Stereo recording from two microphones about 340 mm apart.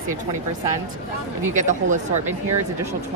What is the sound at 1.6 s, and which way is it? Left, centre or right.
Speech, right.